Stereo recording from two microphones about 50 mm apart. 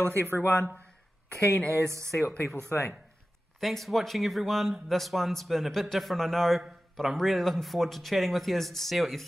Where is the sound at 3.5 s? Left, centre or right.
Centre.